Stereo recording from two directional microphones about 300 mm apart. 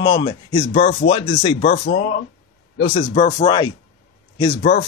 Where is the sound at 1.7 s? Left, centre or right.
Left.